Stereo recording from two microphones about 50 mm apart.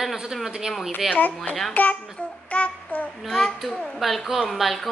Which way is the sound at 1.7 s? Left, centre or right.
Left.